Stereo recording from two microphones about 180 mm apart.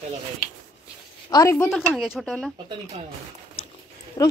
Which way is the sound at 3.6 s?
35° left (ahead or behind).